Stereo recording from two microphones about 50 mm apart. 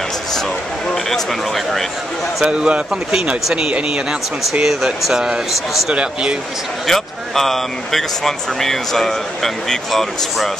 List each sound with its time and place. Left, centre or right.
1.1 s speech: centre
2.4 s speech: centre
4.6 s speech: centre
5.9 s speech: right
6.9 s speech: centre